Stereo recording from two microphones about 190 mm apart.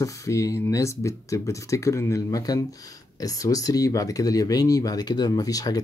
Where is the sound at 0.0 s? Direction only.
15° left (ahead or behind).